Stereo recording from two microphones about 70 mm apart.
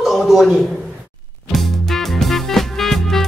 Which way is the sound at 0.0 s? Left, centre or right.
Centre.